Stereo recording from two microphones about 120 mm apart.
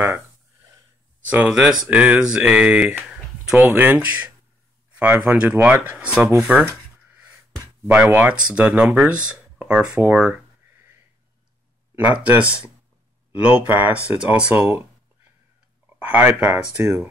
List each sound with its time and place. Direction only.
1.3 s speech: 10° right (ahead or behind)
7.8 s speech: 5° right (ahead or behind)
11.9 s speech: 15° right (ahead or behind)
15.9 s speech: 15° right (ahead or behind)